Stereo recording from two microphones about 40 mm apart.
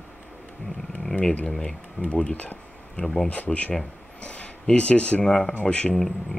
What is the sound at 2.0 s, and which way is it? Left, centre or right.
Speech, left.